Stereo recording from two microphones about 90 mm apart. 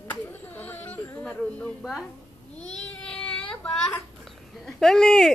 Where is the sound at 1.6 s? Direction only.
5° left (ahead or behind).